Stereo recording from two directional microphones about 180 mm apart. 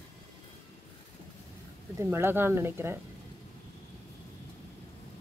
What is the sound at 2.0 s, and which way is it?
Speech, 15° right (ahead or behind).